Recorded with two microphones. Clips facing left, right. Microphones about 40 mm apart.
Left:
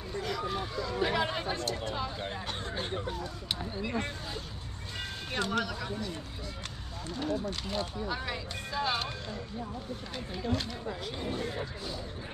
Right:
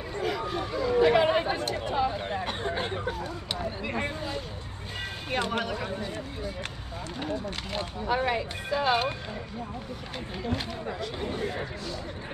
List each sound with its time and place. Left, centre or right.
0.2 s vehicle: centre
0.9 s a sound: right
5.3 s speech: right
7.2 s speech: right
10.9 s speech: right